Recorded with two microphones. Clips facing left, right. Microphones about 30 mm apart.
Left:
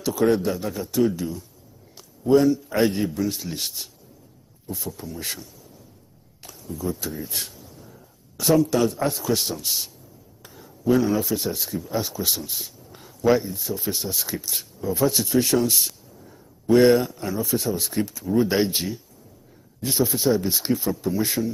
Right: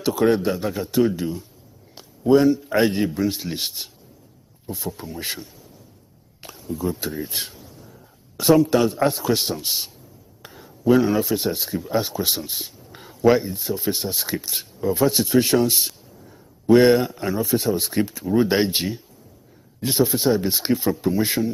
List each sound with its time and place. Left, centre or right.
0.0 s speech: right